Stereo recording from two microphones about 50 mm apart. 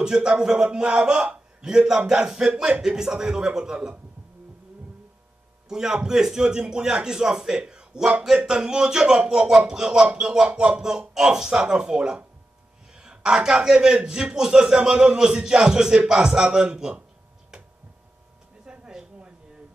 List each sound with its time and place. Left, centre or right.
0.0 s a man's voice: centre
5.7 s a man's voice: centre
18.7 s a sound: centre